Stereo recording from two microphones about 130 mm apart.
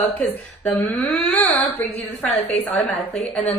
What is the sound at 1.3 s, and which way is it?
Music, 10° left (ahead or behind).